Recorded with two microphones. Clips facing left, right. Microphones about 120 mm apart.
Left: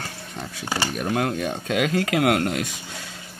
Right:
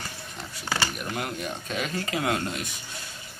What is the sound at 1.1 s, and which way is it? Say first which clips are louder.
Speech: left 8 dB; 90° left.